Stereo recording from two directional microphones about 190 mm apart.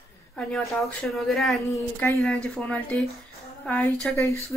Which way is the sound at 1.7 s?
10° left (ahead or behind).